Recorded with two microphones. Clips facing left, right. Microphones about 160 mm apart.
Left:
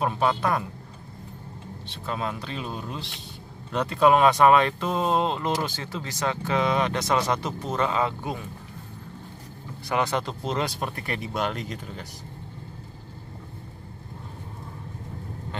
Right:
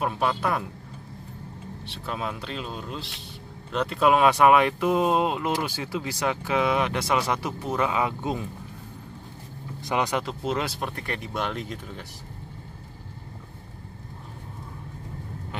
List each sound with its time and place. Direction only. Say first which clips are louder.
0.0 s speech: left 1 dB; 5° right (ahead or behind)
2.0 s speech: left 1 dB; centre (ahead or behind)
8.2 s speech: right 3 dB; 20° right (ahead or behind)
9.8 s speech: even; 15° right (ahead or behind)
10.2 s speech: even; 5° right (ahead or behind)